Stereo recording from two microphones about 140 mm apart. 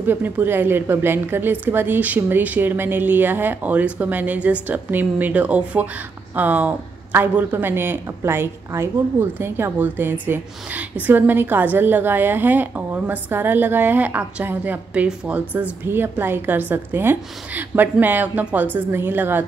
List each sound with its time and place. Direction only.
0.0 s a woman's voice: 15° right (ahead or behind)